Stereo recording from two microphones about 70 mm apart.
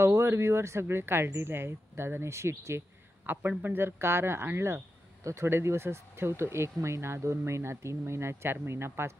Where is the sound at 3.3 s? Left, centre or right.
Right.